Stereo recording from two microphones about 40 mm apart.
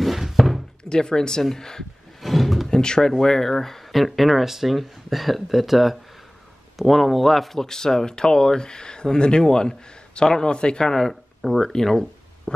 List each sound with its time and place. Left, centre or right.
0.0 s a sound: centre
0.8 s speech: centre
2.2 s roar: centre
2.7 s speech: centre
10.9 s speech: centre